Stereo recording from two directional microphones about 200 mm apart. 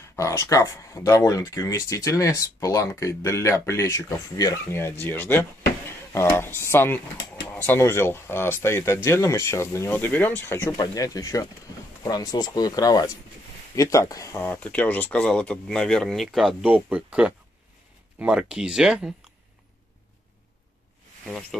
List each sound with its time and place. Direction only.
0.1 s speech: 15° left (ahead or behind); by 19.1 s centre (ahead or behind)
21.3 s speech: centre (ahead or behind)